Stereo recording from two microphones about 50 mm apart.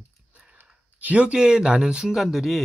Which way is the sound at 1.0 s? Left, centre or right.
Right.